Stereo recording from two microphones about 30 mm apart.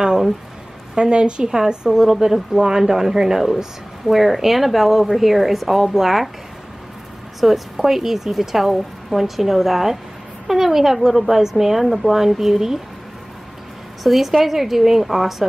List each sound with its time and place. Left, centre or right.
0.9 s a woman's voice: right; by 6.3 s centre
7.3 s speech: centre
14.0 s speech: centre